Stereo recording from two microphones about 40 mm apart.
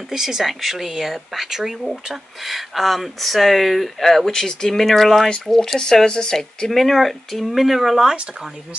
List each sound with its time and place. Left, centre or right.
0.1 s speech: centre
4.3 s speech: centre
5.8 s speech: centre
6.7 s speech: centre